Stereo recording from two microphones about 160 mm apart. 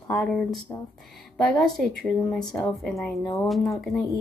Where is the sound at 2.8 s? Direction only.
Centre (ahead or behind).